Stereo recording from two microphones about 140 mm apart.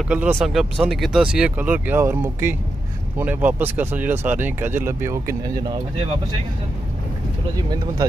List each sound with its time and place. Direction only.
0.1 s speech: 5° right (ahead or behind)
5.6 s speech: 30° right (ahead or behind)
7.7 s speech: 30° right (ahead or behind)